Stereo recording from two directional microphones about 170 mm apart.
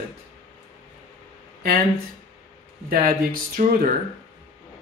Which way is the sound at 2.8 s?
60° right (ahead or behind).